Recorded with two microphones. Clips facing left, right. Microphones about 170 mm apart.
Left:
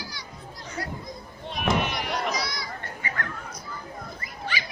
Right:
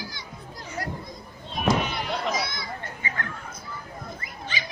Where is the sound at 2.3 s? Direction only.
25° right (ahead or behind).